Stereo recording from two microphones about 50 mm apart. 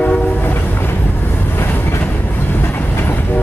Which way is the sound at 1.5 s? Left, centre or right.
Left.